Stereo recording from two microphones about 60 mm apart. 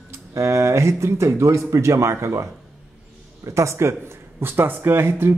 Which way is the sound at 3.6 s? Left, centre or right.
Right.